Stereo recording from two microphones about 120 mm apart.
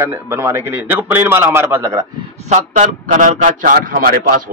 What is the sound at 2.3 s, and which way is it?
A man's voice, 75° right (ahead or behind).